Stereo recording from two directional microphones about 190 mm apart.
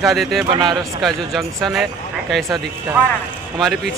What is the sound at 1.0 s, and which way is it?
Speech, centre (ahead or behind).